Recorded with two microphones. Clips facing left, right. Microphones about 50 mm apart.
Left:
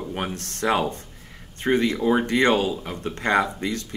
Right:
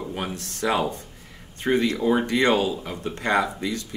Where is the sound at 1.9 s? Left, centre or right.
Centre.